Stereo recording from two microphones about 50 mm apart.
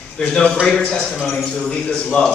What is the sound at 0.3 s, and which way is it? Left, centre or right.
Speech, centre.